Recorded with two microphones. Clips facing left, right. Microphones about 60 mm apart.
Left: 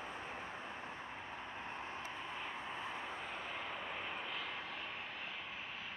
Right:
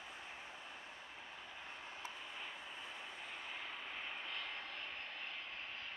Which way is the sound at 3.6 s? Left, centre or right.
Centre.